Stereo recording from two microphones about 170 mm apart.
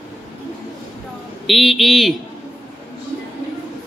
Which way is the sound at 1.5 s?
Centre (ahead or behind).